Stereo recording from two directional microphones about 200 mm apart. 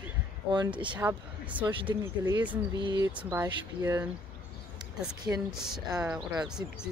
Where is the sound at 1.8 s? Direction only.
20° right (ahead or behind).